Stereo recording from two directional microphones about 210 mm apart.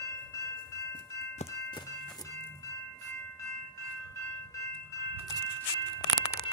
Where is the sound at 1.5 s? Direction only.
20° left (ahead or behind).